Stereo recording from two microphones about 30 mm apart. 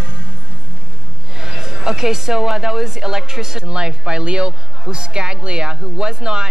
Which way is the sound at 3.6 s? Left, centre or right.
Right.